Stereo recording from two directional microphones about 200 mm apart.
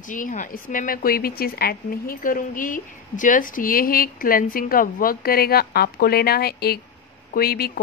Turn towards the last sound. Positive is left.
turn(degrees=50)  # may be behind; listen again after turning